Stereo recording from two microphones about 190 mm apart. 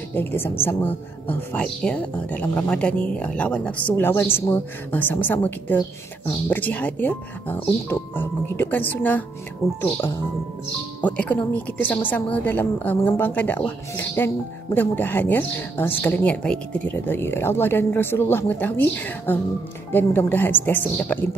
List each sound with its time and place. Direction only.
0.1 s a woman's voice: 10° left (ahead or behind)
11.0 s a woman's voice: 10° left (ahead or behind)